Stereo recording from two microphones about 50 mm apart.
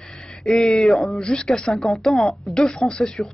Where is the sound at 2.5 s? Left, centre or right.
Centre.